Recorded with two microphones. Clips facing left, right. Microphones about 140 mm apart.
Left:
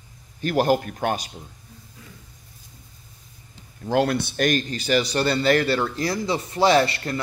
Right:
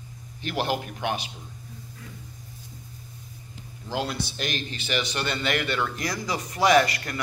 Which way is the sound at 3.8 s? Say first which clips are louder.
Left 8 dB; 55° left (ahead or behind).